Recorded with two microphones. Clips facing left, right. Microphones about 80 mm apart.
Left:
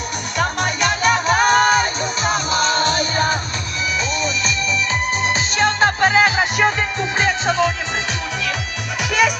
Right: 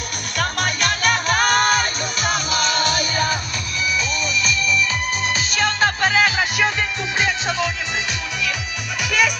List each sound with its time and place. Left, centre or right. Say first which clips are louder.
0.4 s music: left 2 dB; centre
2.3 s music: left 3 dB; left